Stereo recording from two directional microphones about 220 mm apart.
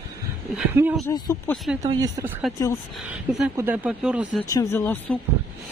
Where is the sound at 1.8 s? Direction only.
15° right (ahead or behind).